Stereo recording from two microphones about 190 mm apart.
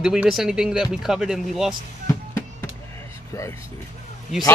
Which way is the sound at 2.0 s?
15° left (ahead or behind).